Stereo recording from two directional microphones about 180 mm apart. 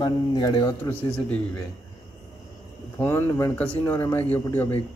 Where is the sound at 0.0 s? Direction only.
25° left (ahead or behind).